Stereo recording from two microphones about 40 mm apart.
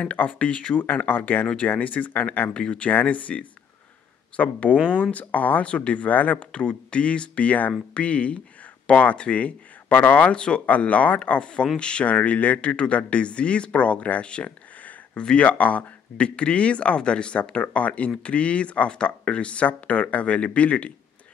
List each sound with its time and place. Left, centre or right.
0.3 s speech: left
0.7 s speech: left
2.5 s speech: left
2.9 s speech: left
5.7 s speech: left
6.4 s speech: left
10.3 s speech: left
14.8 s a sound: left
15.2 s speech: left